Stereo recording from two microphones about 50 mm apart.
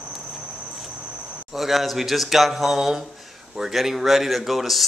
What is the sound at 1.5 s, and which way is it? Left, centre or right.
Speech, centre.